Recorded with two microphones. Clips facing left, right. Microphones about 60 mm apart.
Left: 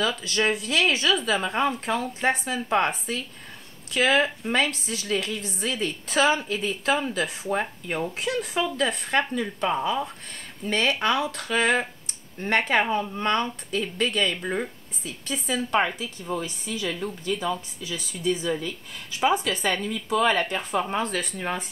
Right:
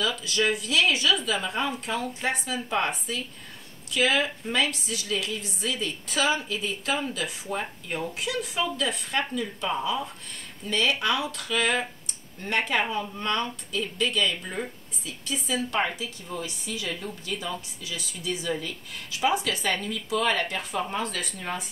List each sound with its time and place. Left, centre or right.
0.1 s speech: left